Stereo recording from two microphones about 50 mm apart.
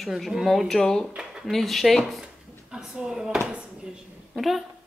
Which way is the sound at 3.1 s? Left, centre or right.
Centre.